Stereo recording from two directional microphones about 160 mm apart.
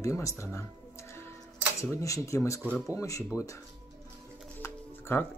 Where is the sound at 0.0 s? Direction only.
20° left (ahead or behind).